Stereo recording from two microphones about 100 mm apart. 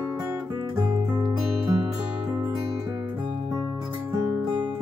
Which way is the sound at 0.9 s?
45° right (ahead or behind).